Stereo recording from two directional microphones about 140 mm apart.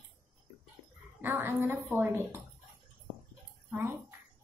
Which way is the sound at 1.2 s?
15° right (ahead or behind).